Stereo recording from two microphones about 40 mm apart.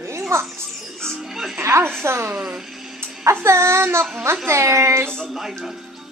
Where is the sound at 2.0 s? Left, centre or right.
Right.